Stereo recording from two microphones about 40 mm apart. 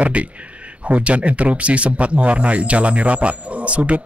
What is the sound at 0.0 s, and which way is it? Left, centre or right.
A man's voice, right.